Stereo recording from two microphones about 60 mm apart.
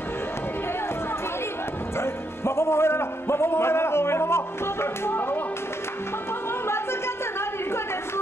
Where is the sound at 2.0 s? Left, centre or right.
Left.